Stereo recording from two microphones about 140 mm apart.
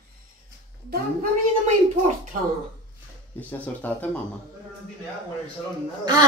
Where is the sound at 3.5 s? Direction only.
10° left (ahead or behind).